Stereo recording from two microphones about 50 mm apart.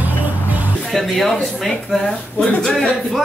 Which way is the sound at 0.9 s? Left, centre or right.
Centre.